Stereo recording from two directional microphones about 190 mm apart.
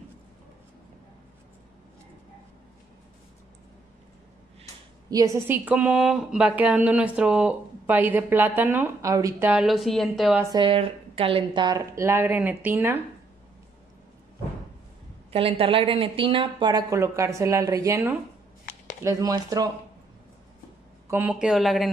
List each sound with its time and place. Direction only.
5.1 s a woman's voice: 15° right (ahead or behind); by 10.4 s centre (ahead or behind)
10.5 s a woman's voice: 25° right (ahead or behind); by 13.0 s 10° right (ahead or behind)
15.3 s speech: 30° right (ahead or behind)
21.1 s a woman's voice: 5° right (ahead or behind)